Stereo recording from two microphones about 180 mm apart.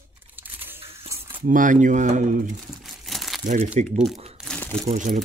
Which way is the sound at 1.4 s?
45° right (ahead or behind).